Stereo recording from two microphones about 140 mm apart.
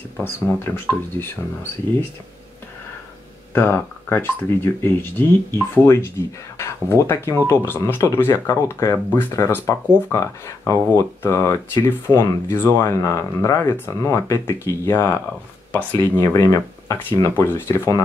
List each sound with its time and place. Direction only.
0.2 s speech: 15° left (ahead or behind)
3.5 s speech: 15° left (ahead or behind)